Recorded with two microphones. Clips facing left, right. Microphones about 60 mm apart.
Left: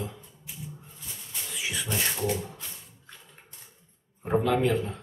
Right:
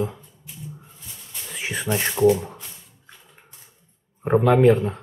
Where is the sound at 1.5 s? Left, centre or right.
Right.